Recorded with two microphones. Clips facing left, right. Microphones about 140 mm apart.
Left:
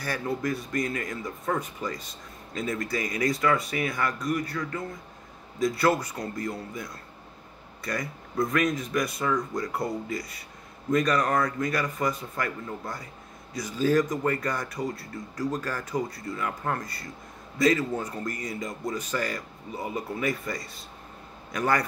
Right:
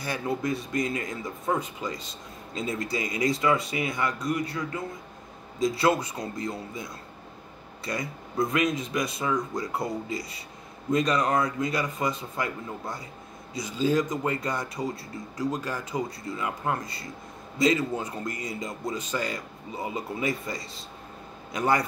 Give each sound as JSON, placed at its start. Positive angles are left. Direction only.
{"t": 0.0, "sound": "speech", "side_deg": -20}
{"t": 7.8, "sound": "speech", "side_deg": -20}
{"t": 15.9, "sound": "speech", "side_deg": -15}